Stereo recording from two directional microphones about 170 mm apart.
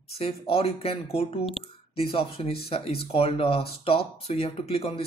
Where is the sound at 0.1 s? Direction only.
35° left (ahead or behind).